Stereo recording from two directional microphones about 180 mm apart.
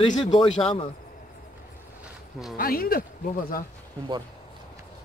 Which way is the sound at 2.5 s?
55° left (ahead or behind).